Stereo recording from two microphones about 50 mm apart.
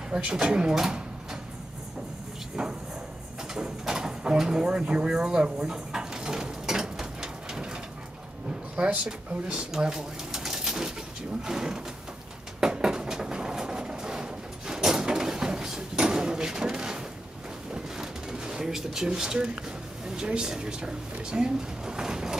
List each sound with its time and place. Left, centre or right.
0.1 s speech: centre
3.5 s bird: centre
8.7 s speech: right
9.0 s speech: centre
12.5 s a sound: centre
17.9 s pigeon: centre
20.2 s speech: centre